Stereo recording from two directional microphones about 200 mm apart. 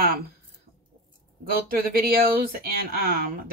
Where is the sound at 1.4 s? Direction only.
45° right (ahead or behind).